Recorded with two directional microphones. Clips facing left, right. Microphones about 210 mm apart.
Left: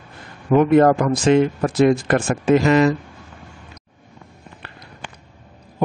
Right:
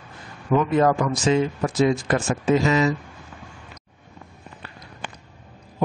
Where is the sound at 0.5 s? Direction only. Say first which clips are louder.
Left 6 dB; 60° left (ahead or behind).